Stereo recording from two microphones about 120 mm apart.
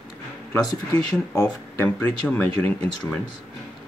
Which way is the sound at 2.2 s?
15° left (ahead or behind).